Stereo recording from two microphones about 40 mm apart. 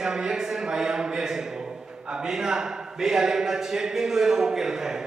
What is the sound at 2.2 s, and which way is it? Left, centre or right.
Speech, centre.